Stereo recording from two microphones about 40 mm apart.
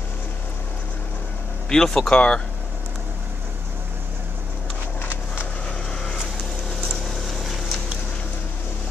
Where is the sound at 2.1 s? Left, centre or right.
Left.